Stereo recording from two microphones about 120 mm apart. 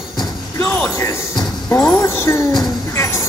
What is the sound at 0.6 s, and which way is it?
Music, 20° left (ahead or behind).